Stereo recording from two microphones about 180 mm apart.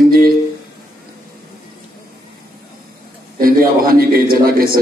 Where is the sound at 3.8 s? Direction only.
55° right (ahead or behind).